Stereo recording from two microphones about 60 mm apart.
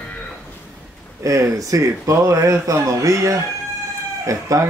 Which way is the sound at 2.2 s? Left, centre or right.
Right.